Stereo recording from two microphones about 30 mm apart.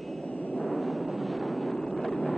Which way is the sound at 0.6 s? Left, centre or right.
Centre.